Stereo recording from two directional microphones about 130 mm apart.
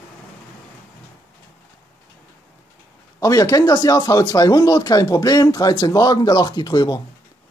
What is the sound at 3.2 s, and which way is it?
Speech, 25° left (ahead or behind).